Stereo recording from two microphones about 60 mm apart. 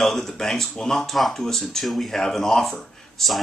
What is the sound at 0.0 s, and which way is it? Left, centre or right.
Speech, centre.